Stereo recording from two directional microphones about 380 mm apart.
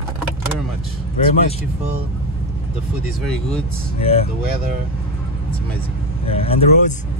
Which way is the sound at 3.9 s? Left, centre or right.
Centre.